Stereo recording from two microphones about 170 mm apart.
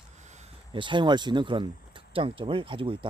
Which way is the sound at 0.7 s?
30° right (ahead or behind).